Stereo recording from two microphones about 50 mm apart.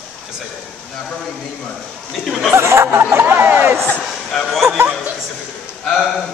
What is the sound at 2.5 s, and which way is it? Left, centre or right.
Speech, right.